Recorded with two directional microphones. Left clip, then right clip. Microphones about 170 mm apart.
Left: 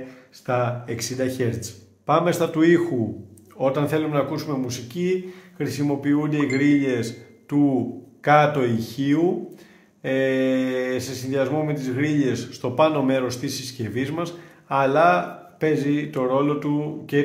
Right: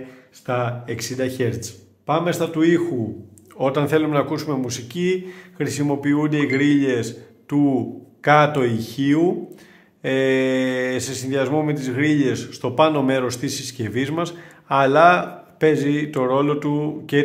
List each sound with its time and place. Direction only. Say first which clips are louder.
0.5 s speech: even; 10° right (ahead or behind)
2.0 s a man's voice: left 1 dB; centre (ahead or behind)
3.5 s speech: right 3 dB; 20° right (ahead or behind)